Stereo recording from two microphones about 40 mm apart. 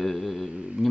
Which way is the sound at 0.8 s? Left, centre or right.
Right.